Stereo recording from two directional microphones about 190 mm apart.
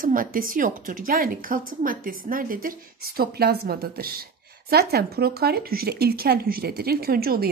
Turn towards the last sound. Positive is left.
turn(degrees=-55)  # may be behind; listen again after turning